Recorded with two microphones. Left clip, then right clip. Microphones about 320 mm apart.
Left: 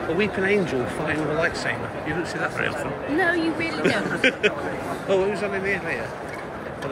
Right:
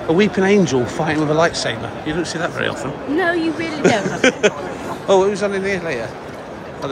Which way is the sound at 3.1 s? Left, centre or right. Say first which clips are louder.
Right 4 dB; right.